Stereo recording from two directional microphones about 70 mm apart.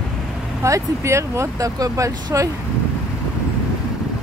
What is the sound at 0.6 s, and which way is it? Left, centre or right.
Speech, right.